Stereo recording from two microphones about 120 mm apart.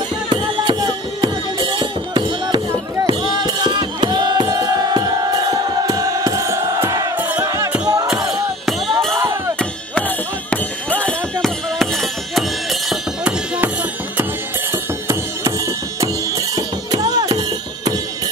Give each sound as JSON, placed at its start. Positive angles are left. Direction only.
{"t": 0.3, "sound": "music", "side_deg": -40}
{"t": 8.3, "sound": "music", "side_deg": 0}
{"t": 9.6, "sound": "music", "side_deg": 10}
{"t": 14.7, "sound": "music", "side_deg": -25}